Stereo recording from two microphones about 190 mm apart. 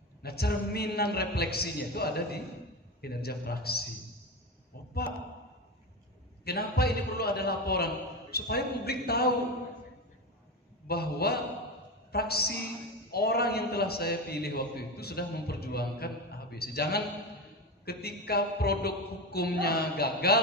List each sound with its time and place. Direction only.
0.2 s a man's voice: 55° left (ahead or behind)
6.4 s a man's voice: 55° left (ahead or behind)
10.9 s a man's voice: 55° left (ahead or behind)